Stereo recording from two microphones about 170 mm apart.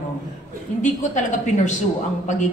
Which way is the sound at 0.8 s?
45° left (ahead or behind).